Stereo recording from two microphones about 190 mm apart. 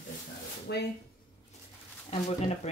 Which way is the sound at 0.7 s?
60° left (ahead or behind).